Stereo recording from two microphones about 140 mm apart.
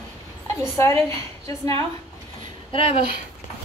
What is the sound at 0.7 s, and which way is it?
Speech, 20° left (ahead or behind).